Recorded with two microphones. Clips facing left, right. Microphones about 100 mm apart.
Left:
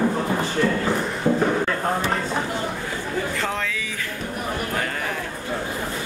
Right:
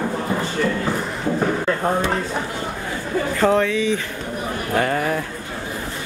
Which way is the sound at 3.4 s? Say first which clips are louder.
Right 10 dB; 35° right (ahead or behind).